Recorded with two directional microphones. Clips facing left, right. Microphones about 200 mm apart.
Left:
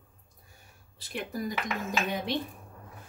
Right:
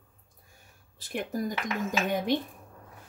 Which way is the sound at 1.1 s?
45° right (ahead or behind).